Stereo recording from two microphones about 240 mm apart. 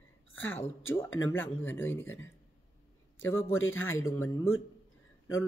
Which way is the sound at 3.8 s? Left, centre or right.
Centre.